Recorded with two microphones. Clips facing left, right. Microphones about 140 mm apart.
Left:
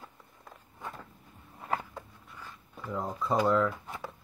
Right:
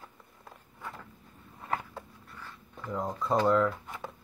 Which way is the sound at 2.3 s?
10° left (ahead or behind).